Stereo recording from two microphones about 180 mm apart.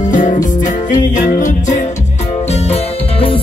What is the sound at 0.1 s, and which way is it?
Music, 45° left (ahead or behind).